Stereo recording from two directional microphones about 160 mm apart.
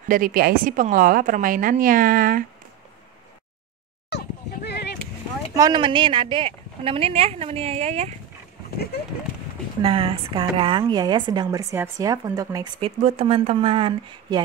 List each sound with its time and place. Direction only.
0.1 s a woman's voice: 65° right (ahead or behind)
4.6 s a sound: 90° left
5.5 s a woman's voice: 25° right (ahead or behind); by 8.1 s 40° right (ahead or behind)
9.8 s a woman's voice: 35° right (ahead or behind)
11.5 s speech: 20° right (ahead or behind)
12.8 s a woman's voice: 40° right (ahead or behind)